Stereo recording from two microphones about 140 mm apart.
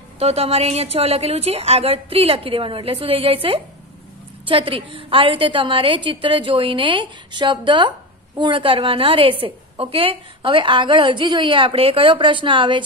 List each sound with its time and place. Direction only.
0.2 s a woman's voice: 45° right (ahead or behind)